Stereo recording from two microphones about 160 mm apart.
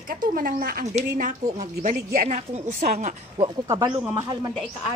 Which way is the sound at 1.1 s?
55° right (ahead or behind).